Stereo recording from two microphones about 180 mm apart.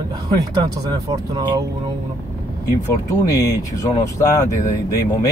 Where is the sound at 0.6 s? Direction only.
20° right (ahead or behind).